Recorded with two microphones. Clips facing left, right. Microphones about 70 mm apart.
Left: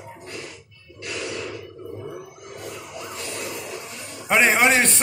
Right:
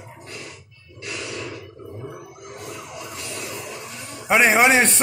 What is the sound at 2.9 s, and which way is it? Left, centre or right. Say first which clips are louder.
Emergency vehicle: left 1 dB; left.